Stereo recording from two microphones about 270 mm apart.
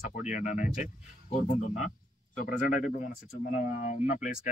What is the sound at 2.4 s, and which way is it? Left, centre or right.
Speech, left.